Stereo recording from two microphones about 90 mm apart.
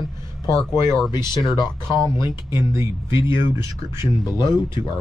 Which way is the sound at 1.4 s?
55° left (ahead or behind).